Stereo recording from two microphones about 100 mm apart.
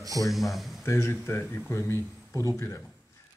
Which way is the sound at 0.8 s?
25° left (ahead or behind).